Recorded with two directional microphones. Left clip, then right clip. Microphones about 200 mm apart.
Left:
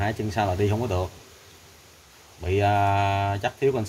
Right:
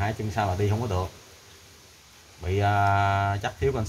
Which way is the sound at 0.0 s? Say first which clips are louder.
Left 2 dB; 20° left (ahead or behind).